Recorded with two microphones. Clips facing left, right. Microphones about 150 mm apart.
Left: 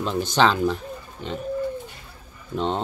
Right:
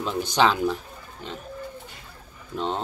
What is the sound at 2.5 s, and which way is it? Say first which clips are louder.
Speech: left 3 dB; centre (ahead or behind).